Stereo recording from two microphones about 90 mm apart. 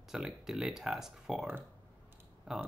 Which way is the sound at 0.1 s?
5° right (ahead or behind).